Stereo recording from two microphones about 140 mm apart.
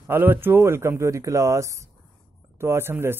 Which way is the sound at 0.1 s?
15° right (ahead or behind).